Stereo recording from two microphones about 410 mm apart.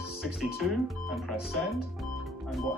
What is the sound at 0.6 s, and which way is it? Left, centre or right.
Speech, centre.